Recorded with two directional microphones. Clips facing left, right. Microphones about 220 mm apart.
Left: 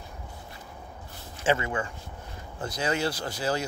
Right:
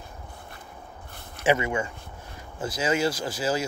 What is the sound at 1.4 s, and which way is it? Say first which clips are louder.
Speech: right 3 dB; 15° right (ahead or behind).